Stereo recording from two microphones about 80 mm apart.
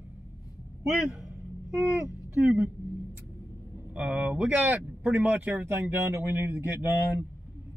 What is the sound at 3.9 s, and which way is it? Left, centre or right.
Speech, centre.